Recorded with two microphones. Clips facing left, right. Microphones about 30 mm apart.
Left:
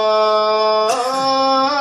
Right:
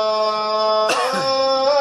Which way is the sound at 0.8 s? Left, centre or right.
Right.